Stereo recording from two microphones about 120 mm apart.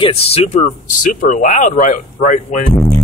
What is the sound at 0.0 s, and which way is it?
Speech, 55° left (ahead or behind).